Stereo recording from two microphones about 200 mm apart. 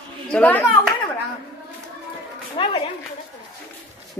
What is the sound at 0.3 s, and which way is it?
Speech, 10° left (ahead or behind).